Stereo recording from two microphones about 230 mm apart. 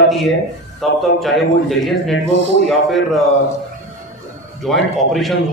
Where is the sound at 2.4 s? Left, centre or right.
Right.